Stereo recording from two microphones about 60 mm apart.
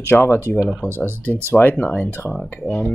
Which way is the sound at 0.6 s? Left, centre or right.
Centre.